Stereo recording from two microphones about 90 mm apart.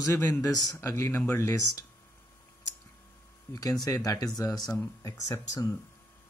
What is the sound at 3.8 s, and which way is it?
Speech, 40° left (ahead or behind).